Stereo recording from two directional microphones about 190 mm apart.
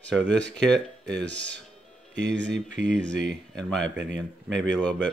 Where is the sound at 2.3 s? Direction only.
70° right (ahead or behind).